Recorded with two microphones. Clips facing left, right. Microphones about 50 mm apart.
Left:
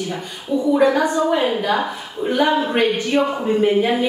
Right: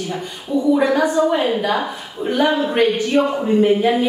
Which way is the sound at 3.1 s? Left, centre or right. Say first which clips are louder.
Right 2 dB; left.